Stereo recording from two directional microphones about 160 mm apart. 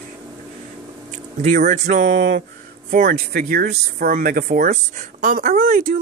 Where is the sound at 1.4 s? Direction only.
50° right (ahead or behind); by 4.6 s 65° right (ahead or behind).